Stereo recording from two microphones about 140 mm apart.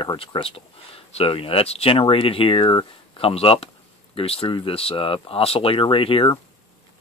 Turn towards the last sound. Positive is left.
turn(degrees=40)  # may be behind; listen again after turning